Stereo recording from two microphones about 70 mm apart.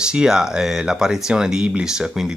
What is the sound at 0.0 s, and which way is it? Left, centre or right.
Speech, centre.